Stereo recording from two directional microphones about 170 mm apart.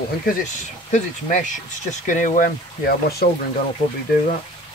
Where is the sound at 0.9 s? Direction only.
45° left (ahead or behind); by 3.2 s 70° left (ahead or behind).